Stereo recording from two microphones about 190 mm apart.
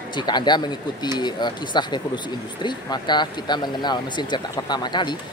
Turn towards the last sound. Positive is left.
turn(degrees=25)  # may be behind; listen again after turning